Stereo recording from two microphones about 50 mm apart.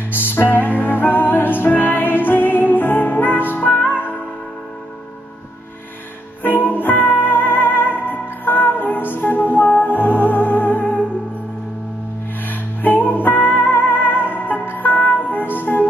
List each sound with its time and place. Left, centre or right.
0.1 s music: left
6.4 s music: left
12.4 s music: left